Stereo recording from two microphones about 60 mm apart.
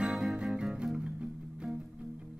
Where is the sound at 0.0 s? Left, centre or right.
Centre.